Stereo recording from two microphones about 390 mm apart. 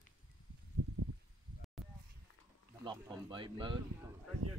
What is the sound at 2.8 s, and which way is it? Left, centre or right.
Speech, centre.